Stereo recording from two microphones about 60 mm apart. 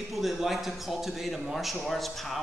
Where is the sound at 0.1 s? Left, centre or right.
Centre.